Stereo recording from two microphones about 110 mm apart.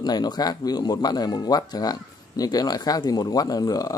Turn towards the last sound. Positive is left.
turn(degrees=35)  # may be behind; listen again after turning